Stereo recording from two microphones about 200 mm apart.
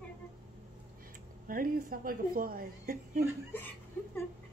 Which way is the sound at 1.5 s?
45° right (ahead or behind).